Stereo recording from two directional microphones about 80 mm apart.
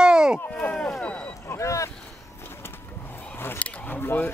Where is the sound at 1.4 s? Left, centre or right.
Left.